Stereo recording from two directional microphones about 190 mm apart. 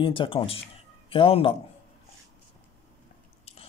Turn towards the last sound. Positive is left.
turn(degrees=30)  # may be behind; listen again after turning